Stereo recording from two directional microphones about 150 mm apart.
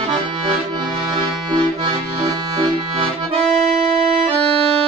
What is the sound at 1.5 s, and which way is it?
Accordion, 30° right (ahead or behind).